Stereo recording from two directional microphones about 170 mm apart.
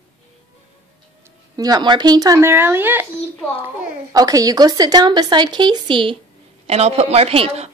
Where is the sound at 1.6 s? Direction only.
25° right (ahead or behind).